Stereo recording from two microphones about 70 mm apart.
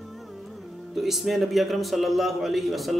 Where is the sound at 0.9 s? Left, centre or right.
Centre.